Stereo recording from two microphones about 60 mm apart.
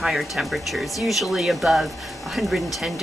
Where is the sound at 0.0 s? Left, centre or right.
Centre.